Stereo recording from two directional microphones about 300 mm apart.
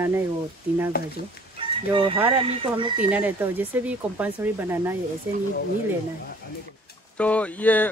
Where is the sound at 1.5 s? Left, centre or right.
Centre.